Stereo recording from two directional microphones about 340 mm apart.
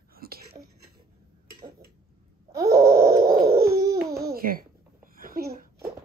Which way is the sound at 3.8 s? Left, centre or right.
Centre.